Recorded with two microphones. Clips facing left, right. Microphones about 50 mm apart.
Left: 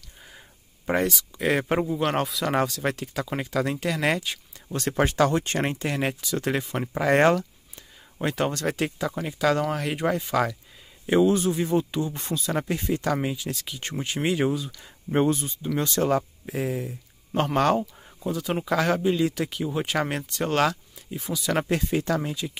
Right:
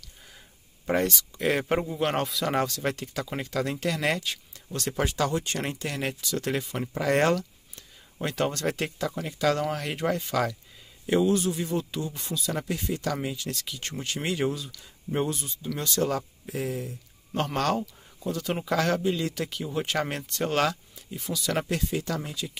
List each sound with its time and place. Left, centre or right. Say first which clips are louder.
0.8 s speech: left 1 dB; centre
4.7 s speech: left 5 dB; left
7.0 s a sound: left 4 dB; left
8.5 s speech: left 2 dB; centre
11.1 s speech: left 3 dB; left
13.3 s speech: left 3 dB; centre
15.0 s speech: left 6 dB; left
18.3 s speech: left 2 dB; centre
21.1 s speech: left 3 dB; centre
21.6 s speech: left 4 dB; left
22.3 s speech: left 4 dB; left